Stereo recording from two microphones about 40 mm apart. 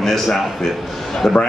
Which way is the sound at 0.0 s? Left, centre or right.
Centre.